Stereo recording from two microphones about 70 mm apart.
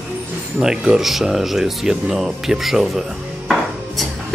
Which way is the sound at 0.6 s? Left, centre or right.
Centre.